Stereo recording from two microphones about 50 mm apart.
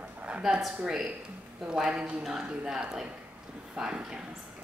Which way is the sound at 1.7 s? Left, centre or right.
Centre.